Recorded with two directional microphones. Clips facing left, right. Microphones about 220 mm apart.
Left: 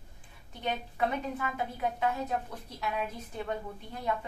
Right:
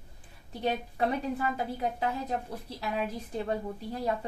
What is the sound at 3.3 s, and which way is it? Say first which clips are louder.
Speech: right 4 dB; 35° right (ahead or behind).